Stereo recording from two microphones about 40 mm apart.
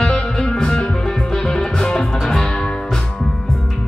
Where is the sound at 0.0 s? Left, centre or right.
Centre.